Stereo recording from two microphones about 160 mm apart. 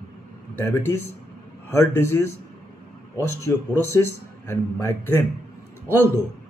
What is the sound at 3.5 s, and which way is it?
Speech, 15° left (ahead or behind).